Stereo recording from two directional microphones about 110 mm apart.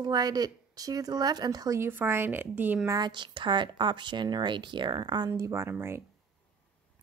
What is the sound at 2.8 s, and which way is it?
Speech, 35° right (ahead or behind).